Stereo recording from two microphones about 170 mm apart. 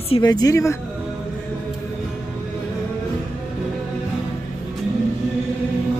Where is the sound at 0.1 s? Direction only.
25° left (ahead or behind).